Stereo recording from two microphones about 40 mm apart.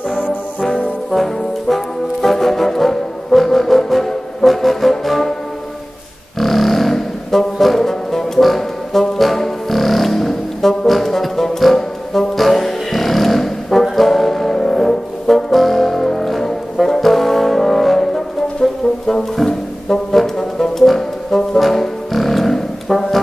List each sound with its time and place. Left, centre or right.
0.1 s brass instrument: left
1.1 s brass instrument: centre
2.2 s music: centre
6.4 s music: centre
13.9 s brass instrument: centre